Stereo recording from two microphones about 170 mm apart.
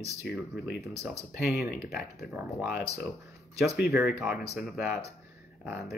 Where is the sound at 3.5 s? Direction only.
70° left (ahead or behind).